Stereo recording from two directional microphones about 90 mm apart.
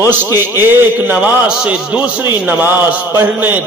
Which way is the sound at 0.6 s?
20° right (ahead or behind).